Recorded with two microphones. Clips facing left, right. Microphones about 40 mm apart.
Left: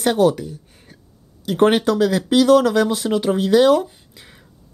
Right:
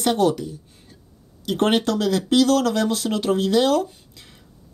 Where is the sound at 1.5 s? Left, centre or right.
Centre.